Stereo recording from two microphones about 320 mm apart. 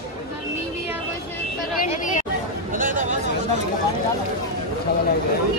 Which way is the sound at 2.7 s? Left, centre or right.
Right.